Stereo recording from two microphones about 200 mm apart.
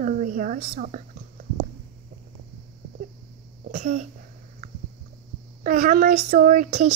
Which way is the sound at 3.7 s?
40° right (ahead or behind).